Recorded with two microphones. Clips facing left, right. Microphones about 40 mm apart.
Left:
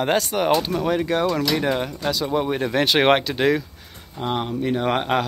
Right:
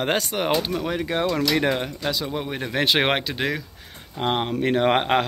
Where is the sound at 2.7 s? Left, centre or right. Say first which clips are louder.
Left 3 dB; centre.